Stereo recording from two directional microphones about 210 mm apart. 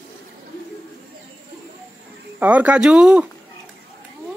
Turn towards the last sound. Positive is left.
turn(degrees=-5)  # may be behind; listen again after turning